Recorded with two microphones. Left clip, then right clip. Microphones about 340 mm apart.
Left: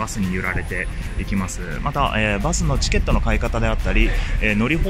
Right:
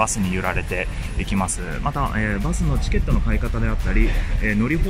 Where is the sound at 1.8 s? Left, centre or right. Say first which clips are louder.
Left 4 dB; centre.